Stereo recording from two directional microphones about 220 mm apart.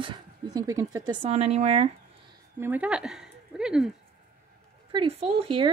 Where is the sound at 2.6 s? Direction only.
5° right (ahead or behind).